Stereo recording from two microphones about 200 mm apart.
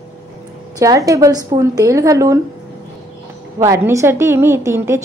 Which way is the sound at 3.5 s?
15° right (ahead or behind).